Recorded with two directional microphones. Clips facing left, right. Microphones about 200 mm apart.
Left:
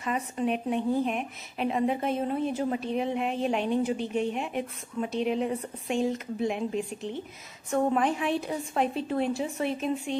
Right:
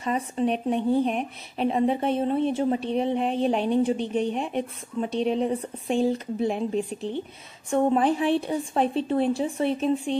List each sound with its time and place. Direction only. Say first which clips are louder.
0.0 s a woman's voice: right 4 dB; 30° right (ahead or behind)